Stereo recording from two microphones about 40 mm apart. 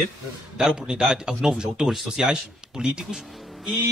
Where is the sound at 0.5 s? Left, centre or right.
Centre.